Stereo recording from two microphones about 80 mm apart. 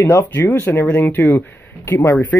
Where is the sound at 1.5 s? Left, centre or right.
Left.